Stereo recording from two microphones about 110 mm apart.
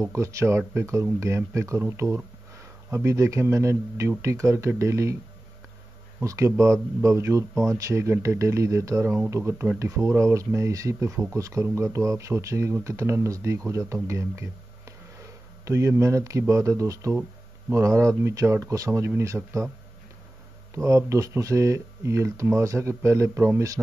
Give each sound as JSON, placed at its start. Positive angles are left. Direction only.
{"t": 0.0, "sound": "speech", "side_deg": -25}
{"t": 6.2, "sound": "speech", "side_deg": -25}
{"t": 20.7, "sound": "speech", "side_deg": -25}